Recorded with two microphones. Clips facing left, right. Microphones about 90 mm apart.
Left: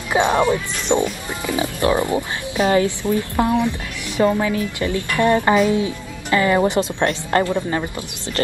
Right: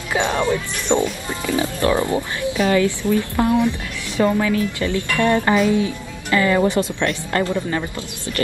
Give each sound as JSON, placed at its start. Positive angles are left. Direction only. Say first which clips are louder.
{"t": 0.1, "sound": "speech", "louder": "left 3 dB", "side_deg": 20}
{"t": 2.6, "sound": "speech", "louder": "left 1 dB", "side_deg": 30}
{"t": 3.0, "sound": "speech", "louder": "even", "side_deg": 20}
{"t": 7.0, "sound": "speech", "louder": "left 2 dB", "side_deg": 35}